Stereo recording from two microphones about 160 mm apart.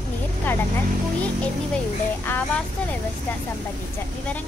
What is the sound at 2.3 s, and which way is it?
Speech, 10° left (ahead or behind).